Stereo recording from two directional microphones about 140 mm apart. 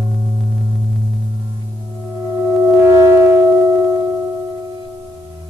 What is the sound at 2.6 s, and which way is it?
Foghorn, 20° right (ahead or behind).